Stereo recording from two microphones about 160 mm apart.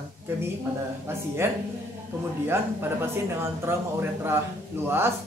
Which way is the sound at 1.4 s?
15° right (ahead or behind).